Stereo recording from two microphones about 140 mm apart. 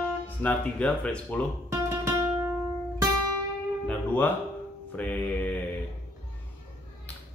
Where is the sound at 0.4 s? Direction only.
10° left (ahead or behind).